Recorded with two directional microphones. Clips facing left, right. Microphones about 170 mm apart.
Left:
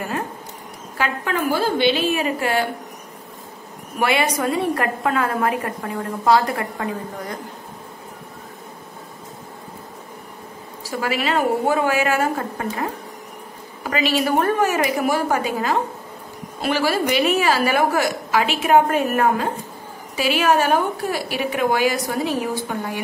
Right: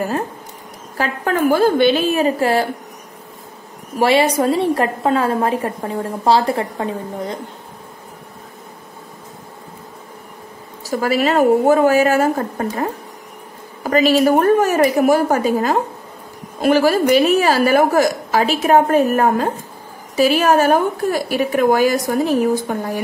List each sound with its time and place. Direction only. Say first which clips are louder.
0.9 s a woman's voice: right 4 dB; 40° right (ahead or behind)
4.0 s a woman's voice: right 6 dB; 30° right (ahead or behind)
10.8 s a woman's voice: right 6 dB; 40° right (ahead or behind)
13.8 s a woman's voice: right 7 dB; 40° right (ahead or behind)